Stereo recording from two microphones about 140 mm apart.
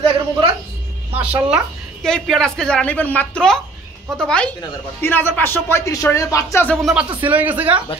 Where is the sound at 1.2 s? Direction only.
10° right (ahead or behind).